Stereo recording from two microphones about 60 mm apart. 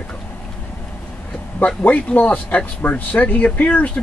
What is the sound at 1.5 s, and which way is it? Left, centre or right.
A man's voice, left.